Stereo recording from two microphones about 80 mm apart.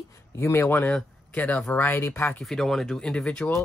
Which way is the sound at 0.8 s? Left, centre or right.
Centre.